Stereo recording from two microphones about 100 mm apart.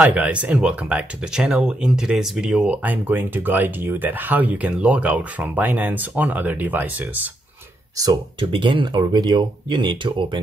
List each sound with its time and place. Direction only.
0.0 s speech: 15° right (ahead or behind)
8.4 s speech: 55° right (ahead or behind)